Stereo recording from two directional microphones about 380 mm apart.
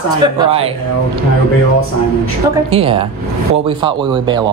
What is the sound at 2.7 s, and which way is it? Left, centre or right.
A woman's voice, centre.